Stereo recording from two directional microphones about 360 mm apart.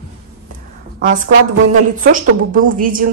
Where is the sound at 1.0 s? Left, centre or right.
Right.